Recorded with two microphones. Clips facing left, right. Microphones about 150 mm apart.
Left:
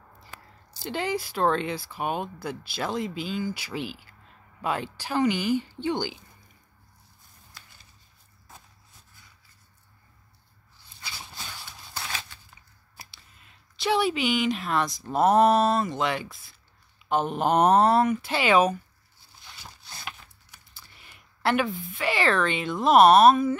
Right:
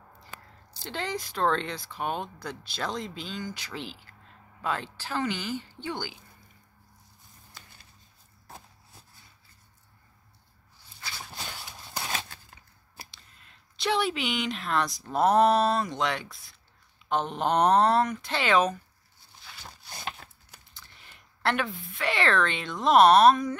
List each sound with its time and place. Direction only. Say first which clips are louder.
0.7 s speech: left 5 dB; 10° left (ahead or behind)
12.0 s a sound: right 2 dB; 45° right (ahead or behind)
13.1 s a woman's voice: even; 5° left (ahead or behind)
21.4 s speech: left 4 dB; 5° left (ahead or behind)